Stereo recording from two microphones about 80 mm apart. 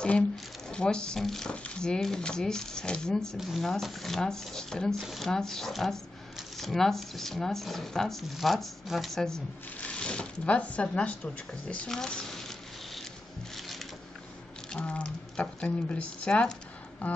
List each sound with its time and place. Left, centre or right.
0.7 s speech: centre
13.6 s a sound: centre
14.7 s speech: centre